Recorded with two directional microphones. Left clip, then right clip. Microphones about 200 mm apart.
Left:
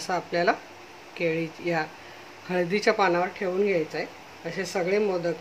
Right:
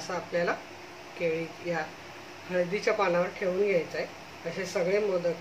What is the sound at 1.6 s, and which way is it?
Speech, 45° left (ahead or behind).